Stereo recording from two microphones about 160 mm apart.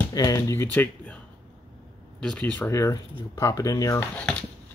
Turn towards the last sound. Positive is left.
turn(degrees=10)  # may be behind; listen again after turning